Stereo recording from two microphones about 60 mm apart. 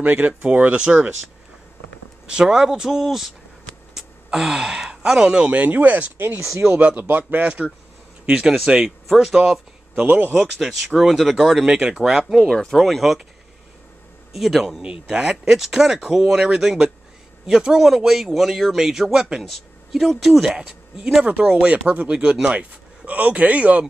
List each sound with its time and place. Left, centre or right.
0.0 s speech: right
2.2 s speech: centre
10.0 s speech: right
10.3 s speech: centre
12.0 s speech: centre
12.4 s speech: centre
14.3 s speech: centre
14.8 s speech: centre
19.4 s speech: centre
20.5 s speech: centre
21.6 s speech: right